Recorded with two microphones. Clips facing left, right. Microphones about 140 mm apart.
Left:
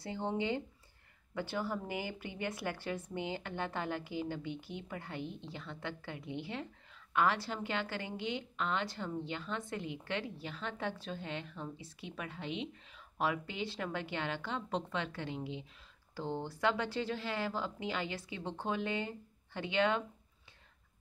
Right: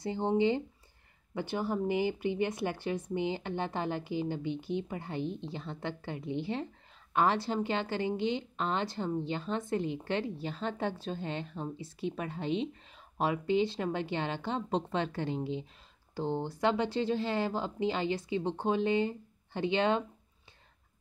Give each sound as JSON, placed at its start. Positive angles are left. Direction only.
{"t": 0.0, "sound": "speech", "side_deg": -25}
{"t": 16.2, "sound": "speech", "side_deg": -20}